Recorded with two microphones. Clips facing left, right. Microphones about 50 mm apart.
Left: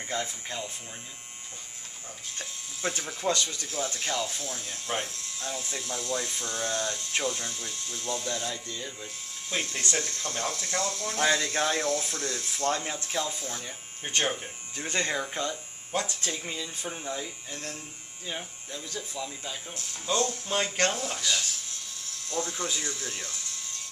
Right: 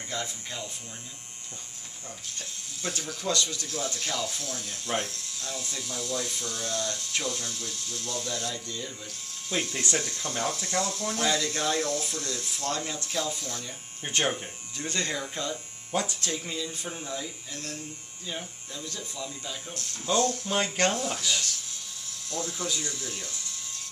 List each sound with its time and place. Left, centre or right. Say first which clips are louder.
0.2 s speech: left 2 dB; centre
2.3 s speech: left 1 dB; left
9.5 s speech: right 2 dB; centre
11.1 s speech: left 3 dB; left
11.8 s speech: left 1 dB; centre
12.6 s speech: left 3 dB; left
14.0 s speech: right 1 dB; centre
14.8 s speech: left 2 dB; left
15.9 s speech: right 1 dB; centre
16.3 s speech: right 1 dB; centre
22.3 s speech: left 1 dB; centre